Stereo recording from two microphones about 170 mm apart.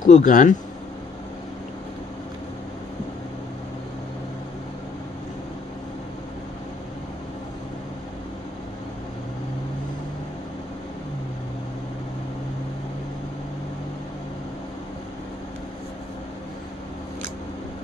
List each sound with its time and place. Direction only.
0.0 s speech: 50° left (ahead or behind)